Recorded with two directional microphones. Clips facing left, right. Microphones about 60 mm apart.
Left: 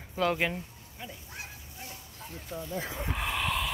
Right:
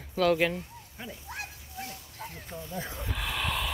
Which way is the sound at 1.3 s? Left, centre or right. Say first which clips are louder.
Right 4 dB; right.